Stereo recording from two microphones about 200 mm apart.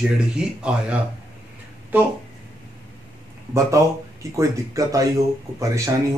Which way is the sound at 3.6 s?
15° right (ahead or behind).